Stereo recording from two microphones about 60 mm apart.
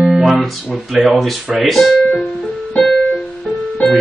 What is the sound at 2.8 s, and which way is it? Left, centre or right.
Keyboard, centre.